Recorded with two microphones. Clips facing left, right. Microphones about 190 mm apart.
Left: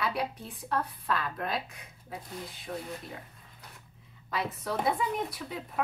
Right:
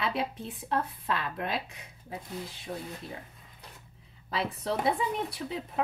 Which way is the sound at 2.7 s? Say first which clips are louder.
Even; 15° right (ahead or behind).